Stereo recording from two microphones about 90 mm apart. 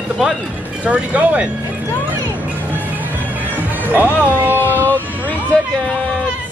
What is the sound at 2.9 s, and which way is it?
Music, 20° right (ahead or behind).